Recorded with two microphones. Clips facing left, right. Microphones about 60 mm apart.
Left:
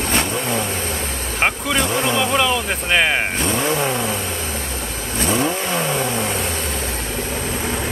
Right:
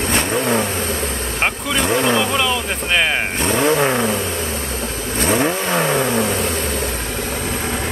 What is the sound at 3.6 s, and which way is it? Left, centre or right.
Vehicle, right.